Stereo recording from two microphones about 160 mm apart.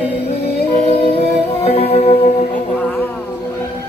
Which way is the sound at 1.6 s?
45° left (ahead or behind).